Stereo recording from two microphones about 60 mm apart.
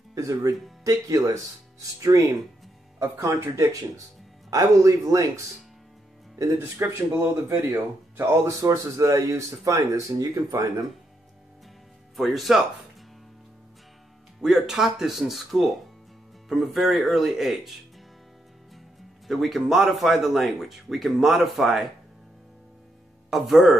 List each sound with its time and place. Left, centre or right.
0.1 s speech: right
0.8 s speech: right
3.0 s speech: right
4.5 s speech: right
7.7 s speech: right
8.5 s speech: right
12.2 s speech: centre
14.4 s speech: centre
19.2 s speech: centre
23.3 s speech: centre